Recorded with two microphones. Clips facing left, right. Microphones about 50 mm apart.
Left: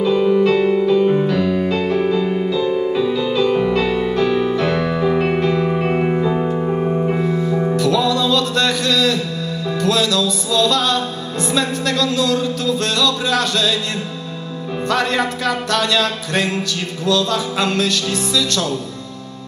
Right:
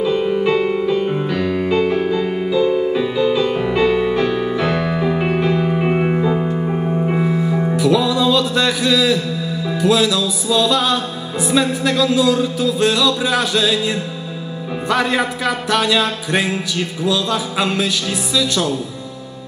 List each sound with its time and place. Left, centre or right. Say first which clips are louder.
0.0 s music: left 2 dB; centre
7.1 s music: even; centre
14.9 s music: right 1 dB; centre